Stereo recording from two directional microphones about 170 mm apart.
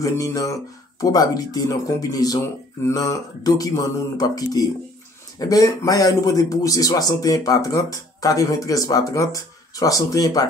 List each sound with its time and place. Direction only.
0.0 s speech: 20° left (ahead or behind)